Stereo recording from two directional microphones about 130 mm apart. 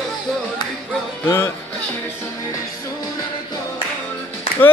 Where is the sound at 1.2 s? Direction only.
20° left (ahead or behind).